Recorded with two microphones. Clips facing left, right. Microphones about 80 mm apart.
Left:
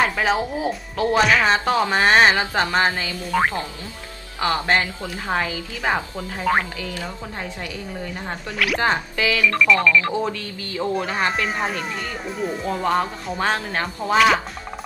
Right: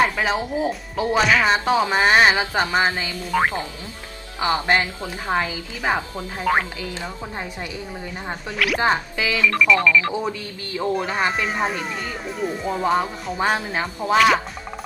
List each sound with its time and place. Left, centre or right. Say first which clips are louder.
0.2 s speech: left 1 dB; centre
4.4 s speech: even; centre
6.5 s speech: even; centre
6.8 s speech: even; right
8.3 s speech: right 1 dB; centre
8.8 s speech: left 1 dB; centre
9.5 s speech: right 1 dB; centre